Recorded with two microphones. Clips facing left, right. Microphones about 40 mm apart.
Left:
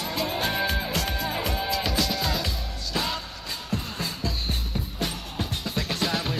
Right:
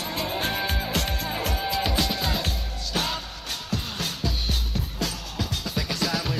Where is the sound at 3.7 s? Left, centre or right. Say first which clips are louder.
Even; right.